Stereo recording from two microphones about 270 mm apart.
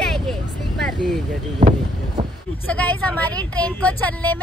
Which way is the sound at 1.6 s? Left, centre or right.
Right.